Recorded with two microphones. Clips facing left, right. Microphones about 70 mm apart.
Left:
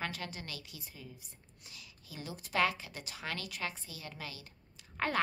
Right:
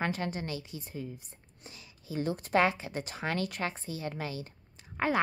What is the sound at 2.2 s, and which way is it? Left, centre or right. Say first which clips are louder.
Speech: right 8 dB; right.